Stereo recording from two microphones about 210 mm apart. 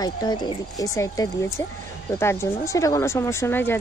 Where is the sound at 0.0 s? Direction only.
20° left (ahead or behind).